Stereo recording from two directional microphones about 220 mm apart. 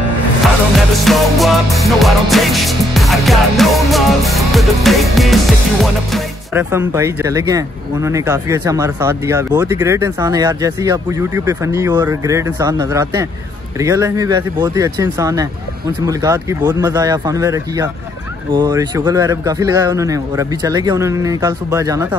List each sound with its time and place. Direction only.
0.7 s music: centre (ahead or behind)
6.7 s speech: 10° right (ahead or behind)